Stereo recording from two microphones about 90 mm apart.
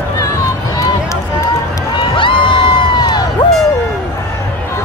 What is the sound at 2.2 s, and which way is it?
Crowd, 65° left (ahead or behind).